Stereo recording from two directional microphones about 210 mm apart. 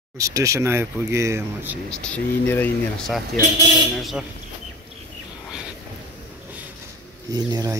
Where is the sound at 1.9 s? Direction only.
5° left (ahead or behind).